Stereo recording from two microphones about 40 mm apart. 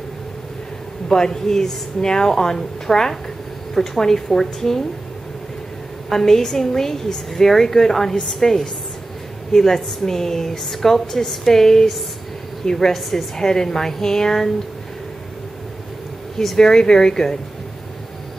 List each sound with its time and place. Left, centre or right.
1.0 s a woman's voice: centre
6.0 s a woman's voice: centre
16.3 s a woman's voice: centre